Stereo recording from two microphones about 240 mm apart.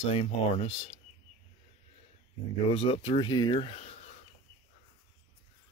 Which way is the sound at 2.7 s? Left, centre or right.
Left.